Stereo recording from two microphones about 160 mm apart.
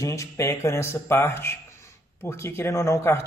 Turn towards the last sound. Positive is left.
turn(degrees=15)  # may be behind; listen again after turning